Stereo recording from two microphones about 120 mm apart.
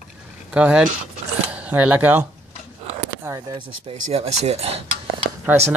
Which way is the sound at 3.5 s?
55° right (ahead or behind).